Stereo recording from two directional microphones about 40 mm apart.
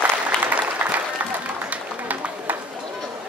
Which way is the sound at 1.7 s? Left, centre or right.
Right.